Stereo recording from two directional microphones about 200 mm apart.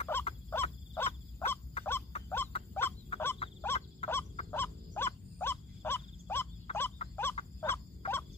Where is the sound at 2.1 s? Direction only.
30° left (ahead or behind).